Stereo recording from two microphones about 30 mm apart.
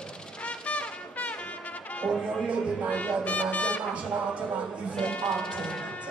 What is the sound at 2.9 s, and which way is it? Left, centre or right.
Music, left.